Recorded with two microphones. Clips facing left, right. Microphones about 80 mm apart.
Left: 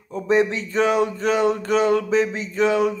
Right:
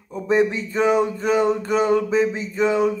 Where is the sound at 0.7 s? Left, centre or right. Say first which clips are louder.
Even; centre.